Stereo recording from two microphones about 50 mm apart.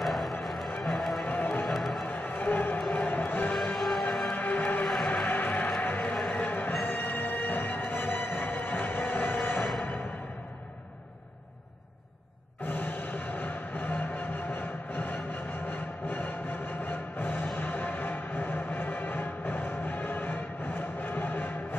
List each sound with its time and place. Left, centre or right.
0.0 s music: centre
1.3 s music: left
1.7 s music: centre
2.0 s music: left
3.7 s music: centre
4.3 s music: left
6.9 s music: left
12.6 s music: left
14.5 s a sound: left
15.7 s music: left